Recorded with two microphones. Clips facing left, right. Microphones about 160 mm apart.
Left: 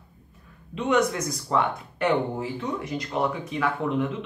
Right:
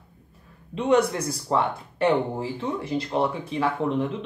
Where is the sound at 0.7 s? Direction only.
30° right (ahead or behind).